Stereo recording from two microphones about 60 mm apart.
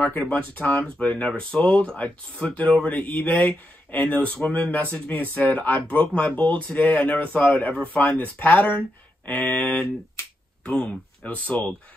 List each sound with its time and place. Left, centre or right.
0.3 s speech: left